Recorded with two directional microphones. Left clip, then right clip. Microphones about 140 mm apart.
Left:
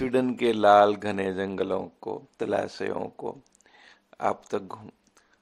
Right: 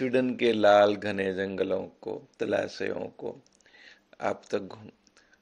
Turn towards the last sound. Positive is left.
turn(degrees=30)  # may be behind; listen again after turning